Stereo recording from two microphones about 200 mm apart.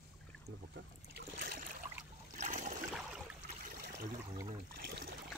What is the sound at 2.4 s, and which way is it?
Boat, 35° right (ahead or behind).